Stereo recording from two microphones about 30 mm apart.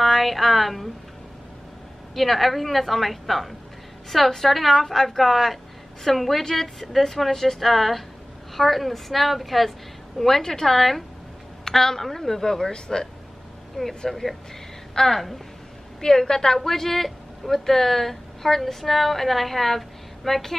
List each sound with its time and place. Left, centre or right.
0.0 s speech: centre
2.1 s a woman's voice: centre
12.7 s a woman's voice: left
13.7 s a woman's voice: centre
16.0 s a woman's voice: centre